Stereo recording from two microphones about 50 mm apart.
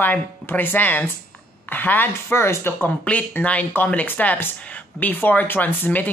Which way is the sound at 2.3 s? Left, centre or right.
Left.